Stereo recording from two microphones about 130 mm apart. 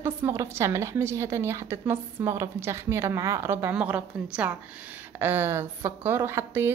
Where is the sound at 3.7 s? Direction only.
10° right (ahead or behind).